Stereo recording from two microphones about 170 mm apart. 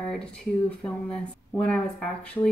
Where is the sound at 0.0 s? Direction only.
5° left (ahead or behind).